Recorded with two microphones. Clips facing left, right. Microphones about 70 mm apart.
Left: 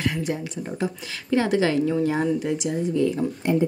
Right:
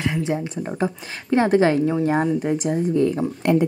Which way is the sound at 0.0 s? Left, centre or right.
Right.